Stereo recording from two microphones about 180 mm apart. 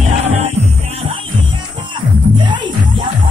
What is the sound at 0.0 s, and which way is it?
Music, 40° right (ahead or behind).